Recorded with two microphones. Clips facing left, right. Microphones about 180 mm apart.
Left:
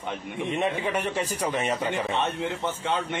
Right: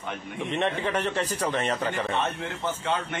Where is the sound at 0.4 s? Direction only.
10° left (ahead or behind).